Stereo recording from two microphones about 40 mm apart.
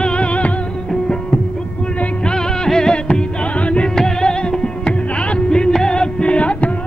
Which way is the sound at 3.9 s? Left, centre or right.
Centre.